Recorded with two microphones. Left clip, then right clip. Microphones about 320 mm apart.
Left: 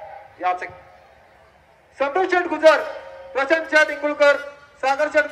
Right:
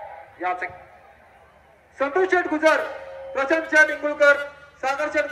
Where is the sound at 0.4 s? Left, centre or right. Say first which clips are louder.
Left 3 dB; left.